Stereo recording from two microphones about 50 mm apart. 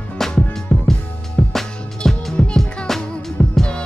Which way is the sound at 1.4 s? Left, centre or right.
Centre.